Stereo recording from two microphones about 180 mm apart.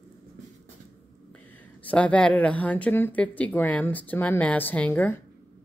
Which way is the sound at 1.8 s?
10° left (ahead or behind).